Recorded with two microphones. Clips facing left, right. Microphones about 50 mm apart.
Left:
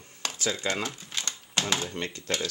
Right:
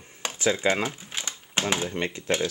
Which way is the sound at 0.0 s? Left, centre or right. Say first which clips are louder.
Right 5 dB; right.